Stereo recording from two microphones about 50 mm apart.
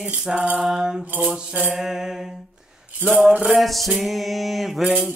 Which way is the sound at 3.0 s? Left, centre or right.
Right.